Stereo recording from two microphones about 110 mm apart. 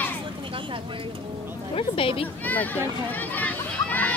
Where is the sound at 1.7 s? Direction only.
55° left (ahead or behind).